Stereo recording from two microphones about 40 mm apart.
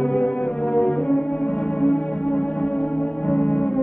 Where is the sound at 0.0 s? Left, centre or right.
Left.